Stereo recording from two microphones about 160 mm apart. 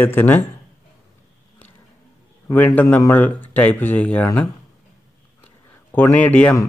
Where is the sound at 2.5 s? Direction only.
10° left (ahead or behind).